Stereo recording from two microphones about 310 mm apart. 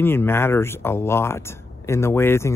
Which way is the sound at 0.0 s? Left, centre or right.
Centre.